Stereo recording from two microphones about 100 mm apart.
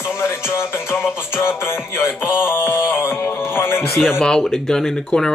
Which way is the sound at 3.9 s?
Centre (ahead or behind).